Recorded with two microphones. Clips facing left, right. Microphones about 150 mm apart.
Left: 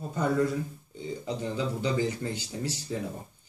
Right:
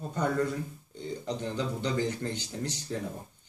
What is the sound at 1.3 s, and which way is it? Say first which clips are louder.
Speech: left 2 dB; 5° left (ahead or behind).